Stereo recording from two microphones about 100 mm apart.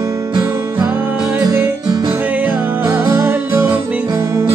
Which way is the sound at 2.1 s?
15° right (ahead or behind).